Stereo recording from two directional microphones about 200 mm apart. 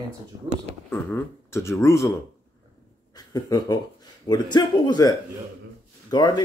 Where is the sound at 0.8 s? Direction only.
10° left (ahead or behind).